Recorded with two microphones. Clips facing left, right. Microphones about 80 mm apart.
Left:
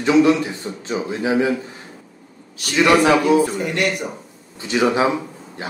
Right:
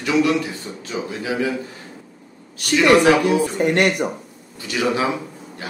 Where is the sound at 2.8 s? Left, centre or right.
Left.